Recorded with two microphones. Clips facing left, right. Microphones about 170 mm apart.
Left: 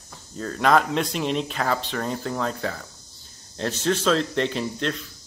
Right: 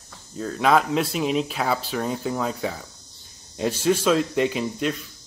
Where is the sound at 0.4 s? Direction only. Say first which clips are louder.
Even; centre (ahead or behind).